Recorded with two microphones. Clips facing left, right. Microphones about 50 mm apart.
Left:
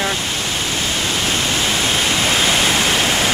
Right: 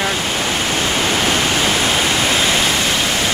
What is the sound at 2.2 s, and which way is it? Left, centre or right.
Waterfall, centre.